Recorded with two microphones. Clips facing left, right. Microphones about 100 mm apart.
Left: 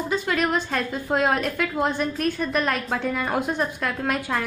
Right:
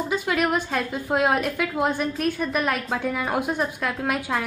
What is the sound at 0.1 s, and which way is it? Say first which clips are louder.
A woman's voice: even; 10° right (ahead or behind).